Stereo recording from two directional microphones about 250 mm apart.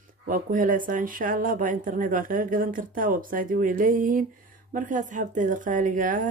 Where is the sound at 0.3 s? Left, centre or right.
Right.